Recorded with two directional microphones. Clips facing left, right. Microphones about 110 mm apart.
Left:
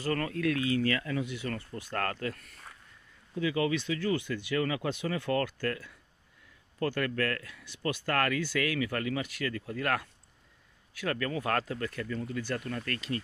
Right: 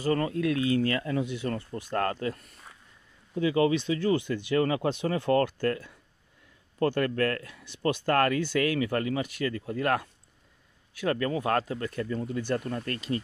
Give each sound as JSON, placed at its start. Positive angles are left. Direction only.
{"t": 0.0, "sound": "speech", "side_deg": -20}